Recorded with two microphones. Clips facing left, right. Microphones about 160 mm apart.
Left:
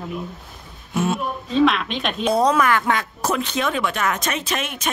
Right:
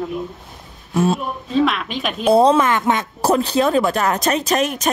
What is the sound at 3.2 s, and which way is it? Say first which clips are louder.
Speech: right 7 dB; 35° right (ahead or behind).